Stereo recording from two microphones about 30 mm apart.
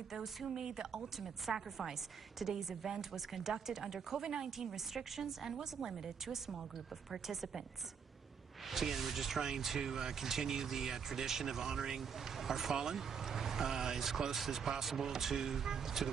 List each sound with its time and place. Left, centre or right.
0.1 s speech: centre
4.2 s speech: right
4.6 s speech: centre
8.6 s speech: centre
9.8 s speech: right